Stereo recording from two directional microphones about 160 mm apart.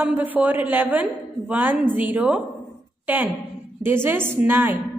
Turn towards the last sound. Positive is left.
turn(degrees=-15)  # may be behind; listen again after turning